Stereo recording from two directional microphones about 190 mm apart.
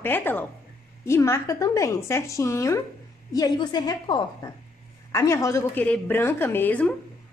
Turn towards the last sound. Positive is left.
turn(degrees=10)  # may be behind; listen again after turning